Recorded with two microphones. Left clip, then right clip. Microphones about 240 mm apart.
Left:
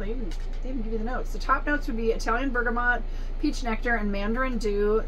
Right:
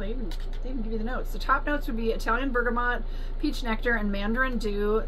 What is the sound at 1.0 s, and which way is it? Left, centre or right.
Speech, centre.